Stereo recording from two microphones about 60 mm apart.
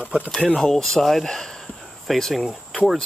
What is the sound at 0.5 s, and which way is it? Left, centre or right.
Speech, centre.